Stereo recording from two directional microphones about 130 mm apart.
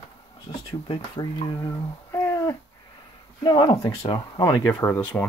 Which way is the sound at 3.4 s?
35° left (ahead or behind).